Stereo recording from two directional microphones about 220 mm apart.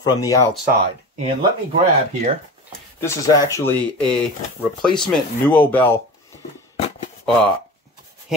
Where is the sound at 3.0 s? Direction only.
15° left (ahead or behind).